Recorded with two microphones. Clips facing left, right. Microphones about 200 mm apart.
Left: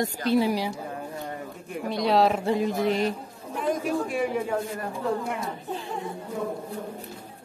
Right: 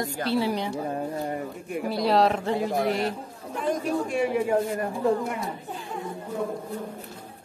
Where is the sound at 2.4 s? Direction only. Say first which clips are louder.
Left 1 dB; 20° left (ahead or behind).